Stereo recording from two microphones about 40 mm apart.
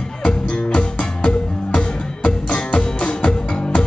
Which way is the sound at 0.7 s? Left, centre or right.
Left.